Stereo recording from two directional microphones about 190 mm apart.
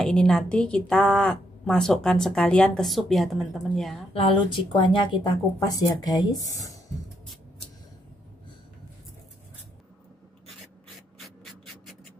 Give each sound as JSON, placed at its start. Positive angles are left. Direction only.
{"t": 0.0, "sound": "a woman's voice", "side_deg": 5}
{"t": 4.1, "sound": "speech", "side_deg": 30}
{"t": 11.1, "sound": "a sound", "side_deg": 0}